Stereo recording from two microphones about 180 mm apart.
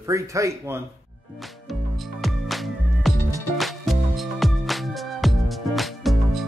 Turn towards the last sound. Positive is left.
turn(degrees=0)  # may be behind; listen again after turning